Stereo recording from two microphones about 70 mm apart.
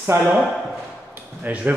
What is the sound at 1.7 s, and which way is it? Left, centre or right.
Speech, right.